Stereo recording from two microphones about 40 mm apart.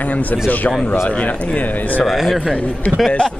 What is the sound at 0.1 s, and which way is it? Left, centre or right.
A man's voice, left.